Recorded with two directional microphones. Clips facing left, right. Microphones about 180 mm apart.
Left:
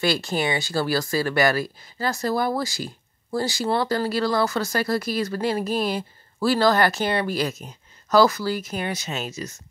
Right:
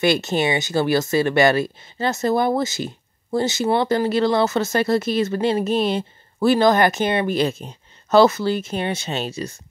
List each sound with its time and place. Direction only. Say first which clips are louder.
0.0 s speech: right 4 dB; 20° right (ahead or behind)